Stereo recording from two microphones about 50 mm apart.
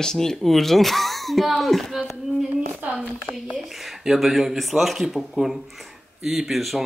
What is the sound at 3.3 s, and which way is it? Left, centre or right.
Speech, centre.